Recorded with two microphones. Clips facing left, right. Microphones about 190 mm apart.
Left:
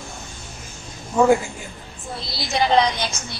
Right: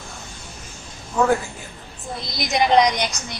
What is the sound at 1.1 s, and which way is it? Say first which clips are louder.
Speech: left 3 dB; 15° left (ahead or behind).